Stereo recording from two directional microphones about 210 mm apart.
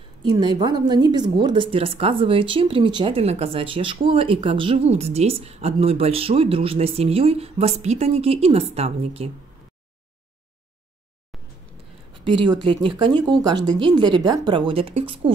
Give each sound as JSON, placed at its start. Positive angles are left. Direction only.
{"t": 0.2, "sound": "a woman's voice", "side_deg": -20}
{"t": 11.3, "sound": "a sound", "side_deg": 0}
{"t": 12.1, "sound": "a woman's voice", "side_deg": -20}